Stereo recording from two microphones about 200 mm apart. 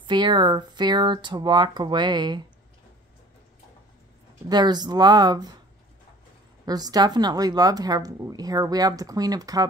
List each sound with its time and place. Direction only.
0.0 s a woman's voice: 25° right (ahead or behind)
4.5 s a woman's voice: 20° right (ahead or behind)
6.6 s a woman's voice: 20° right (ahead or behind)